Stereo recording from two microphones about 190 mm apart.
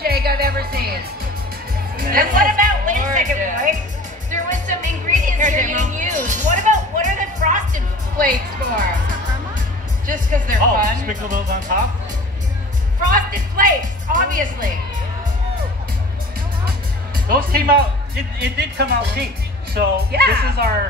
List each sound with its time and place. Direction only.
0.0 s music: 55° right (ahead or behind)
2.0 s speech: 50° right (ahead or behind)
4.5 s music: 40° right (ahead or behind)
10.0 s speech: 45° right (ahead or behind)
13.1 s a woman's voice: 45° right (ahead or behind)
17.3 s speech: 50° right (ahead or behind)